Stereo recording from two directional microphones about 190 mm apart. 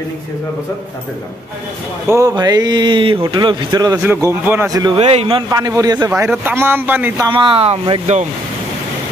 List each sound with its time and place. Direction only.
2.0 s speech: 15° right (ahead or behind)
5.0 s speech: 30° right (ahead or behind)
5.5 s a man's voice: 20° right (ahead or behind)
7.2 s speech: 25° right (ahead or behind)